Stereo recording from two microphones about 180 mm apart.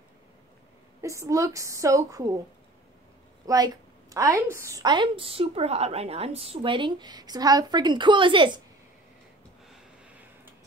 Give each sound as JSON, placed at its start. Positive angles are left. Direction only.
{"t": 1.0, "sound": "a woman's voice", "side_deg": -15}
{"t": 3.4, "sound": "a woman's voice", "side_deg": -20}